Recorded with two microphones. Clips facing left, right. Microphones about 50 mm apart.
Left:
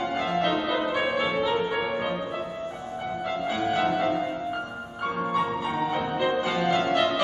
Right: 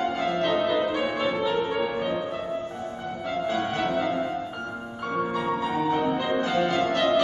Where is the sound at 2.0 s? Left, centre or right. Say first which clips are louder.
Right 1 dB; centre.